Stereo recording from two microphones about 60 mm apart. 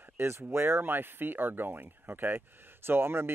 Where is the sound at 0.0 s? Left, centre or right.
Right.